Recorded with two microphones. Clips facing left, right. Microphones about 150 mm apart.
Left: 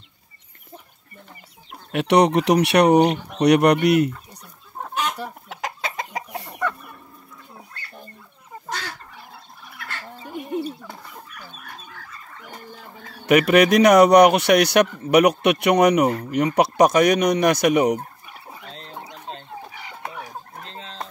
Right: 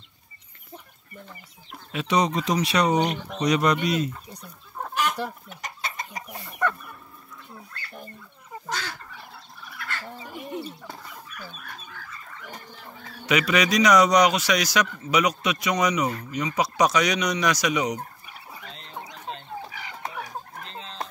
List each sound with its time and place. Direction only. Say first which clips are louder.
1.9 s speech: left 7 dB; 70° left (ahead or behind)
5.5 s chicken: left 6 dB; 90° left
10.2 s a sound: left 9 dB; 20° left (ahead or behind)
13.3 s speech: left 8 dB; 55° left (ahead or behind)
18.7 s chicken: left 2 dB; 40° left (ahead or behind)
20.2 s chicken: even; 25° left (ahead or behind)